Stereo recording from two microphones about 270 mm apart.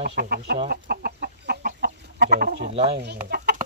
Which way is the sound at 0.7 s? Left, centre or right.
Right.